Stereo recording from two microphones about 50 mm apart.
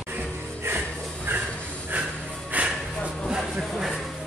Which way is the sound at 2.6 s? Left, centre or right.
Right.